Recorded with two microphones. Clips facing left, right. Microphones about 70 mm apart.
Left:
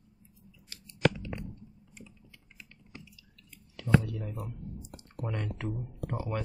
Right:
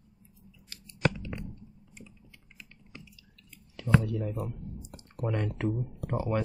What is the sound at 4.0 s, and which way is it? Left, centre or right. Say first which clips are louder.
Speech: right 5 dB; right.